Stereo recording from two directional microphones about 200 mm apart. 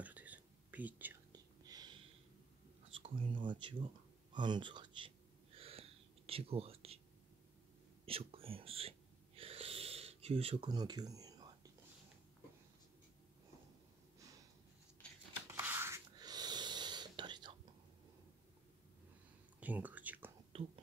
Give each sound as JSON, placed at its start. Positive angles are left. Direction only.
{"t": 0.0, "sound": "whispering", "side_deg": -10}
{"t": 1.3, "sound": "whispering", "side_deg": -20}
{"t": 2.9, "sound": "a sound", "side_deg": -25}
{"t": 4.3, "sound": "speech", "side_deg": -20}
{"t": 5.6, "sound": "whispering", "side_deg": -30}
{"t": 8.0, "sound": "whispering", "side_deg": -30}
{"t": 15.4, "sound": "a sound", "side_deg": -10}
{"t": 19.6, "sound": "a sound", "side_deg": -10}
{"t": 20.5, "sound": "whispering", "side_deg": -25}